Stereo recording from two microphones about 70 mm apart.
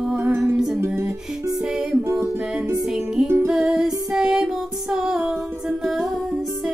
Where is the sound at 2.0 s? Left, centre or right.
Right.